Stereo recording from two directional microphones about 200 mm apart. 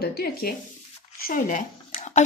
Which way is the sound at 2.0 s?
35° left (ahead or behind).